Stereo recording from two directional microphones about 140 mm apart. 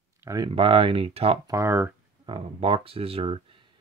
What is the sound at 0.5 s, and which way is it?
Speech, 40° right (ahead or behind).